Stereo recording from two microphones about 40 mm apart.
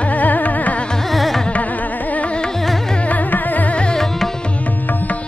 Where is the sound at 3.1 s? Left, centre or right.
Left.